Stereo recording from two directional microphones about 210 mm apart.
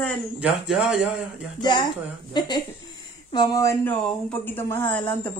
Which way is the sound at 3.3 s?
20° left (ahead or behind).